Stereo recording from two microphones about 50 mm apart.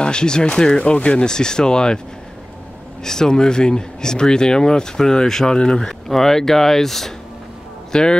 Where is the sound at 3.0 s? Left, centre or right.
Centre.